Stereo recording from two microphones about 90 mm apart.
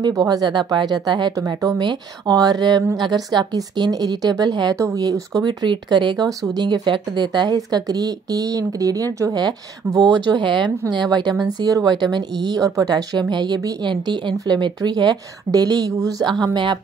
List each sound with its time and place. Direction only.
0.1 s speech: 45° right (ahead or behind)
4.7 s speech: 35° right (ahead or behind)
16.5 s speech: 55° right (ahead or behind)